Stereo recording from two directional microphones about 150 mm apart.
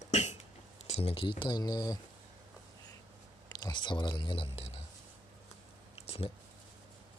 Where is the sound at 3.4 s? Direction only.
30° left (ahead or behind).